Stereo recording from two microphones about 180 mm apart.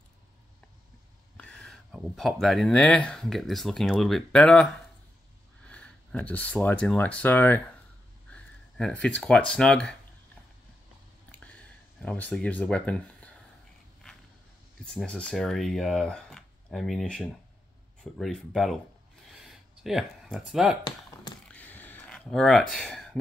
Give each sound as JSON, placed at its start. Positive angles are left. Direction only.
{"t": 1.3, "sound": "speech", "side_deg": 5}
{"t": 5.7, "sound": "speech", "side_deg": 10}
{"t": 12.0, "sound": "speech", "side_deg": 5}
{"t": 14.9, "sound": "speech", "side_deg": 5}
{"t": 19.2, "sound": "a sound", "side_deg": 0}
{"t": 21.5, "sound": "a sound", "side_deg": 10}